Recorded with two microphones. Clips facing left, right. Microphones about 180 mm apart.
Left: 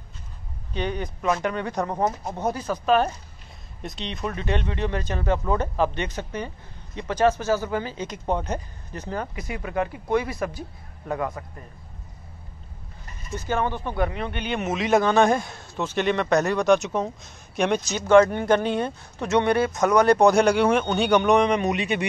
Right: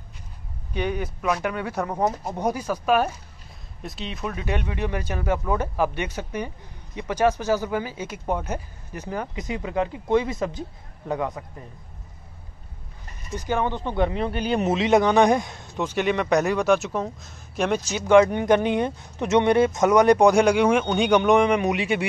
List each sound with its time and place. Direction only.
0.7 s speech: 10° right (ahead or behind)
13.3 s speech: 15° right (ahead or behind)